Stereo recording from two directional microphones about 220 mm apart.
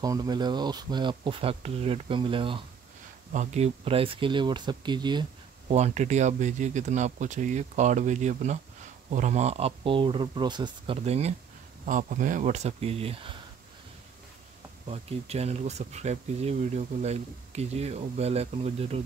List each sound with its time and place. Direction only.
0.0 s speech: 15° right (ahead or behind)
5.7 s speech: 30° right (ahead or behind)
14.9 s speech: 30° right (ahead or behind)